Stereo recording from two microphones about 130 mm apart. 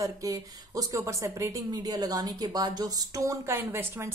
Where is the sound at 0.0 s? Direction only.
25° right (ahead or behind).